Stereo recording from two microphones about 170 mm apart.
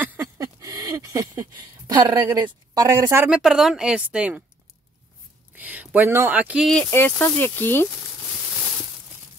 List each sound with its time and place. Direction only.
0.0 s a sound: 10° right (ahead or behind)
0.4 s speech: 20° right (ahead or behind)
5.6 s speech: 10° right (ahead or behind)
6.7 s speech: 10° left (ahead or behind)